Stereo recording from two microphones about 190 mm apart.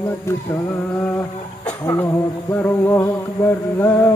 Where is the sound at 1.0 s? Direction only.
10° left (ahead or behind).